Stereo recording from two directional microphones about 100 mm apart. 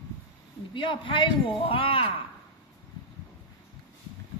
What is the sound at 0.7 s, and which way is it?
A man's voice, 55° left (ahead or behind).